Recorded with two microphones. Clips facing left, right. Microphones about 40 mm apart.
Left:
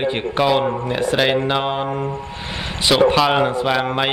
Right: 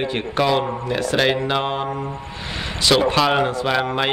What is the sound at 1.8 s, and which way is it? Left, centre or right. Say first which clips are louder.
Mantra: left 3 dB; left.